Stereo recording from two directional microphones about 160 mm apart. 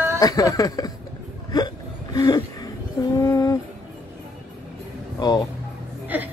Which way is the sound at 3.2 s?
20° left (ahead or behind).